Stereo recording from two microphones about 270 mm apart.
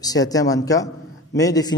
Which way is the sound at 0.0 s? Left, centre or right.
Centre.